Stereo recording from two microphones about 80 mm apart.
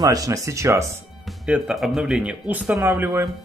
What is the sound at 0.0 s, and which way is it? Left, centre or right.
Speech, right.